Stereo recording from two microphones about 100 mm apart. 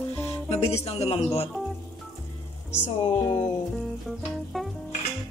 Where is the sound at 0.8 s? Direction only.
85° left.